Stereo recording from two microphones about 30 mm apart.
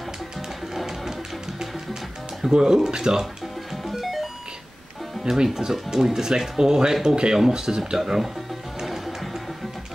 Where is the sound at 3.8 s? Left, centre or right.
Centre.